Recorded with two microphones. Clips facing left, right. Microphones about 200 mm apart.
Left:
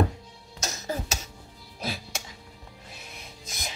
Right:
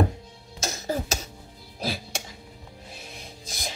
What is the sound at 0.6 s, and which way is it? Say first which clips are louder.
Music: right 4 dB; 30° right (ahead or behind).